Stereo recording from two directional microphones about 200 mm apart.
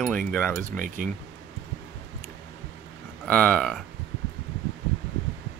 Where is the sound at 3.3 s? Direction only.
5° left (ahead or behind).